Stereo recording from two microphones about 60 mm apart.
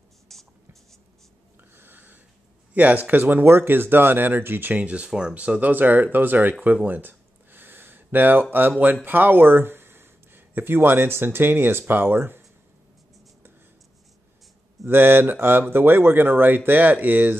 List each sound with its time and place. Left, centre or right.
0.3 s writing: centre
1.8 s a sound: right
2.7 s speech: right
5.6 s speech: right
6.6 s a sound: right
9.0 s speech: right
14.9 s speech: right